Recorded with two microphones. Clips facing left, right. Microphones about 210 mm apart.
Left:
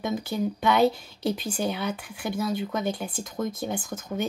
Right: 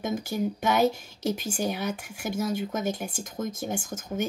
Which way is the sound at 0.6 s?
45° right (ahead or behind).